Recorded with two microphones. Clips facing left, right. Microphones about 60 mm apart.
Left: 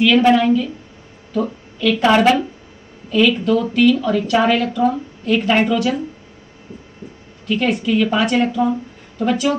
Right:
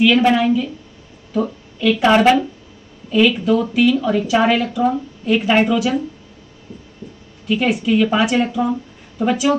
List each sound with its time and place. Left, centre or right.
0.0 s speech: centre
7.4 s a woman's voice: centre